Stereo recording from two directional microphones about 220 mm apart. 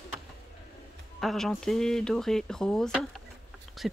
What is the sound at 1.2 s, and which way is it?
Speech, centre (ahead or behind).